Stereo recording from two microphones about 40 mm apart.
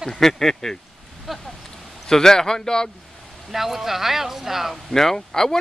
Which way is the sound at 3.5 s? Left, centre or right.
Centre.